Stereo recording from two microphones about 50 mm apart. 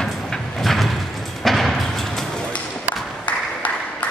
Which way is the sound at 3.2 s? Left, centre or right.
Left.